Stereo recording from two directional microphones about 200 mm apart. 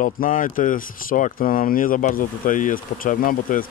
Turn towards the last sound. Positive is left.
turn(degrees=45)  # may be behind; listen again after turning